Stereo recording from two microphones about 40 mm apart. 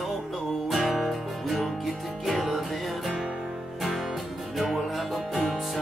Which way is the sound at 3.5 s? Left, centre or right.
Centre.